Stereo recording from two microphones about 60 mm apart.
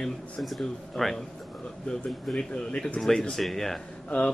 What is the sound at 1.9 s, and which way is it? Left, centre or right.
Speech, centre.